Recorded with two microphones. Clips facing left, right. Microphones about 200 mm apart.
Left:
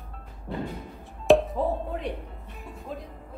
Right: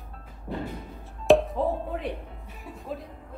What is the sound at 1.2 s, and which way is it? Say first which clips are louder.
Music: even; centre (ahead or behind).